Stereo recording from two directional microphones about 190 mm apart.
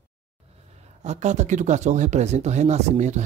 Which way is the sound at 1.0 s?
35° right (ahead or behind).